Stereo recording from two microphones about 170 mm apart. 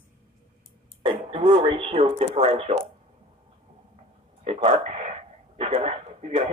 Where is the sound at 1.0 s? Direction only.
30° right (ahead or behind).